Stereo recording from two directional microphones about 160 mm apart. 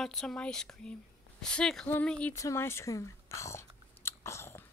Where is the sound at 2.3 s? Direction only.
15° left (ahead or behind).